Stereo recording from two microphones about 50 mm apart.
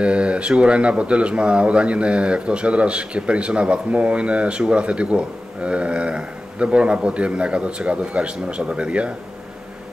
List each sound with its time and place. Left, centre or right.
0.0 s speech: right